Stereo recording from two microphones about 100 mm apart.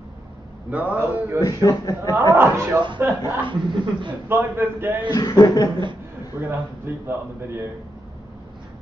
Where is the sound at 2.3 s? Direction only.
25° right (ahead or behind).